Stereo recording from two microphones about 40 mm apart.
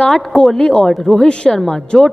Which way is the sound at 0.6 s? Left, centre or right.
Centre.